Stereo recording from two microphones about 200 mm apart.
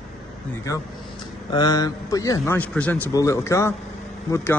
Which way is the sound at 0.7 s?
15° left (ahead or behind).